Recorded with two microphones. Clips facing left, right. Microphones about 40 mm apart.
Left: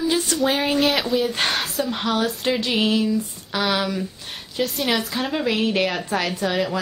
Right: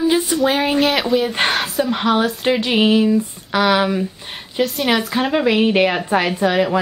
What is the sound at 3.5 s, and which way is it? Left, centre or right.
Speech, centre.